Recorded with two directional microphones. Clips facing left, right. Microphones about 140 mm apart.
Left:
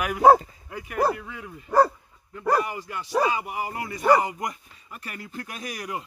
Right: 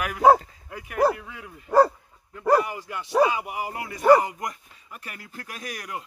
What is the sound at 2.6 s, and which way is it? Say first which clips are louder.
Speech: even; 5° right (ahead or behind).